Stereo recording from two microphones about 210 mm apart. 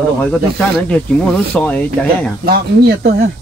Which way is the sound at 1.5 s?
5° left (ahead or behind).